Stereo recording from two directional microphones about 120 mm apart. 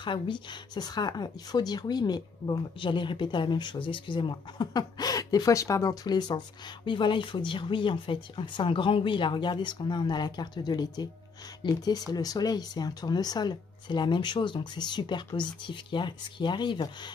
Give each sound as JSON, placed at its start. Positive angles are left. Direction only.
{"t": 0.0, "sound": "speech", "side_deg": 40}